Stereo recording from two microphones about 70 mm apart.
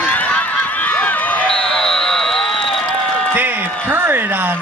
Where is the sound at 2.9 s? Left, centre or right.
Centre.